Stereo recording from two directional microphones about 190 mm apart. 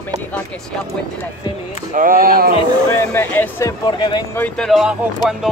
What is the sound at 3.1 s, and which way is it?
Speech, 10° left (ahead or behind).